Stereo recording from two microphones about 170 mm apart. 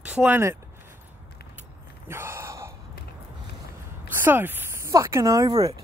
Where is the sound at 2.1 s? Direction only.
15° right (ahead or behind).